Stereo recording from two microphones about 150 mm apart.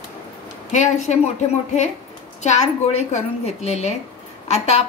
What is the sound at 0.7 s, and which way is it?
A woman's voice, 55° left (ahead or behind).